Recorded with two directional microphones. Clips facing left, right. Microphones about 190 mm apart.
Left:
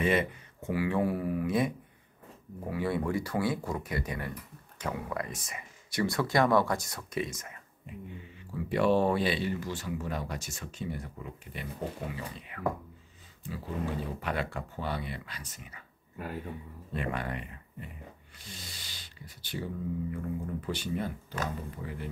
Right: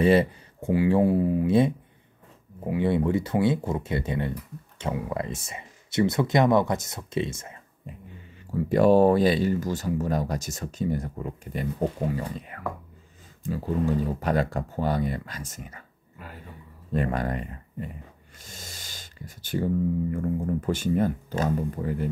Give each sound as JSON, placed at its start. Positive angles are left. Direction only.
{"t": 0.0, "sound": "speech", "side_deg": -35}
{"t": 8.5, "sound": "speech", "side_deg": -40}
{"t": 16.9, "sound": "speech", "side_deg": -40}